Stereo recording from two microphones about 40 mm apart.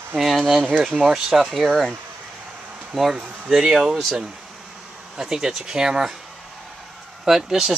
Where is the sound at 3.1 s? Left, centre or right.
Centre.